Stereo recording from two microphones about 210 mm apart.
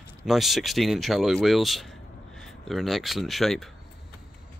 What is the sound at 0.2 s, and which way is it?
Speech, centre (ahead or behind).